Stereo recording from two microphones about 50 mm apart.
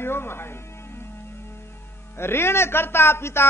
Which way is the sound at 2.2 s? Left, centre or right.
Left.